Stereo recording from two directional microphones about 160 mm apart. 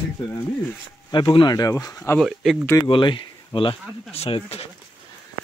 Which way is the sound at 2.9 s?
30° left (ahead or behind).